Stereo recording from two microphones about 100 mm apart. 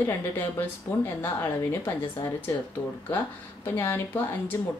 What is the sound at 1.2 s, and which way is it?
Speech, 20° left (ahead or behind).